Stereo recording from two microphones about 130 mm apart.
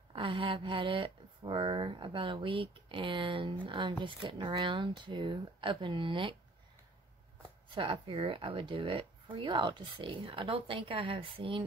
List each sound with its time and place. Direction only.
0.1 s speech: 40° right (ahead or behind)
7.7 s speech: 45° right (ahead or behind)